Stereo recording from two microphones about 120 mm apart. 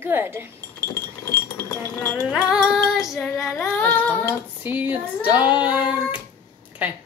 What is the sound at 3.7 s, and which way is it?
Music, 15° left (ahead or behind).